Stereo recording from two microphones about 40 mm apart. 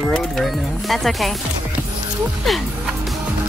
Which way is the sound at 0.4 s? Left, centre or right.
Centre.